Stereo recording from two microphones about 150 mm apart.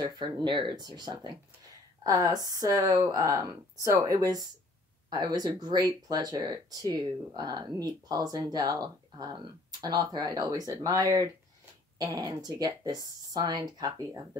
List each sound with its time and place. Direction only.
0.0 s speech: 35° right (ahead or behind)